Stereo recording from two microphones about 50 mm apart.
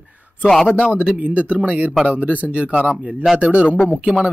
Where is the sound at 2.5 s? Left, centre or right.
Centre.